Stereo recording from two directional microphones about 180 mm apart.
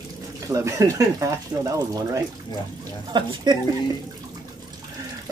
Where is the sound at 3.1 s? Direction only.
25° right (ahead or behind).